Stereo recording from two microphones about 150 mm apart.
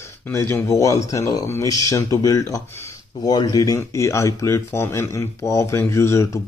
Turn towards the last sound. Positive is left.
turn(degrees=20)  # may be behind; listen again after turning